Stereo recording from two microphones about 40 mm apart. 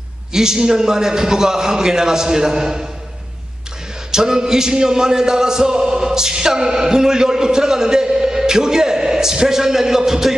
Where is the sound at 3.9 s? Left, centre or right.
Centre.